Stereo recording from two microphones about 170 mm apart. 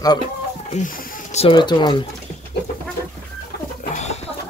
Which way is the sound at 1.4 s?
25° left (ahead or behind).